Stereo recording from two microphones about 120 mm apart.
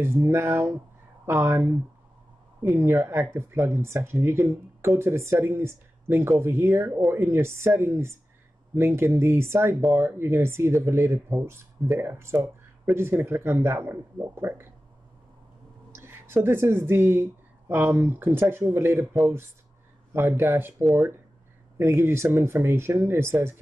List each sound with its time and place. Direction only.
0.0 s speech: 20° right (ahead or behind)
15.9 s a sound: 20° right (ahead or behind)
16.4 s speech: 20° right (ahead or behind)
20.2 s speech: 20° right (ahead or behind)
21.7 s speech: 20° right (ahead or behind)